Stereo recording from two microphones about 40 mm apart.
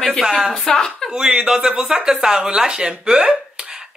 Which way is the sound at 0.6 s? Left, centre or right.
Centre.